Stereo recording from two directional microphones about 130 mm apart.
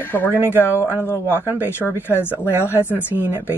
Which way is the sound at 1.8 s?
15° left (ahead or behind).